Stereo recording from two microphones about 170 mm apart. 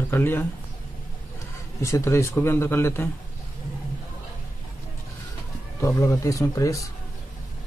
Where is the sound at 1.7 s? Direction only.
15° left (ahead or behind).